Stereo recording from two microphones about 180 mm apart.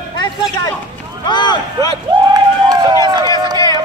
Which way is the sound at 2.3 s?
20° right (ahead or behind).